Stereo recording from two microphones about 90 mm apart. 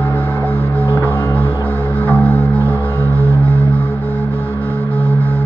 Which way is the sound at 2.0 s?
20° left (ahead or behind).